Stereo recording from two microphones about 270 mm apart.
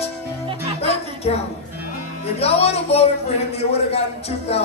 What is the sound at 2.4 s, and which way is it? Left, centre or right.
A man's voice, left.